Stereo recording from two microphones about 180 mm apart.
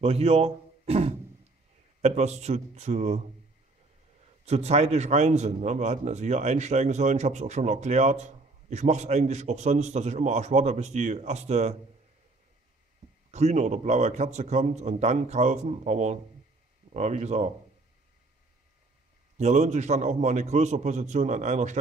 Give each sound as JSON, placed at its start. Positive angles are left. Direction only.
{"t": 0.0, "sound": "a man's voice", "side_deg": -35}
{"t": 4.5, "sound": "a man's voice", "side_deg": -35}
{"t": 13.3, "sound": "a man's voice", "side_deg": -40}
{"t": 19.3, "sound": "a man's voice", "side_deg": -40}